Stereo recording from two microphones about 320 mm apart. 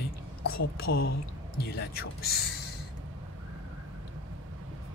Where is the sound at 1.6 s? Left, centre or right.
Left.